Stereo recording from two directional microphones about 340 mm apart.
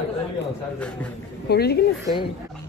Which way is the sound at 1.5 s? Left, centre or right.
Left.